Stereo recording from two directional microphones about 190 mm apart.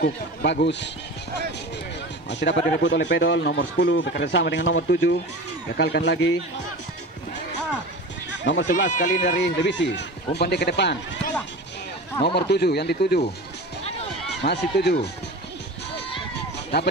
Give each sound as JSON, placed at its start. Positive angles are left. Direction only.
{"t": 0.0, "sound": "speech", "side_deg": 55}
{"t": 2.2, "sound": "speech", "side_deg": 70}
{"t": 8.6, "sound": "speech", "side_deg": 40}
{"t": 9.4, "sound": "speech", "side_deg": 70}
{"t": 12.4, "sound": "speech", "side_deg": 60}
{"t": 14.4, "sound": "speech", "side_deg": 60}